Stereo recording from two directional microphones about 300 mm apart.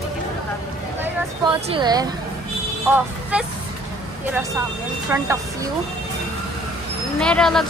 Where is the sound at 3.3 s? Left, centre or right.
Centre.